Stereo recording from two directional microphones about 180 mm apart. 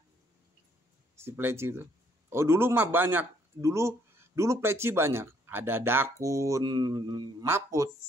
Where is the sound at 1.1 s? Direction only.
15° right (ahead or behind).